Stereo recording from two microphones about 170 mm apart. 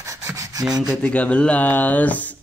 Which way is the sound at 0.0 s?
20° right (ahead or behind).